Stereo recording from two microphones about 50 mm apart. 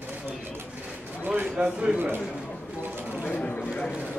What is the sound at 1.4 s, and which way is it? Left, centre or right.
Speech, centre.